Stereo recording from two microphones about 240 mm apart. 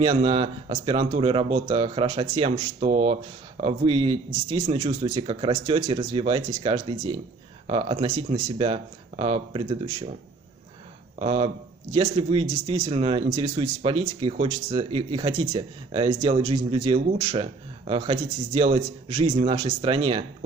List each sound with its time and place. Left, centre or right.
0.0 s speech: right
11.1 s speech: right